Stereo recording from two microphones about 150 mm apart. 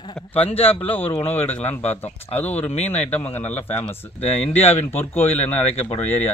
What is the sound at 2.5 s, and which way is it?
Speech, 45° left (ahead or behind).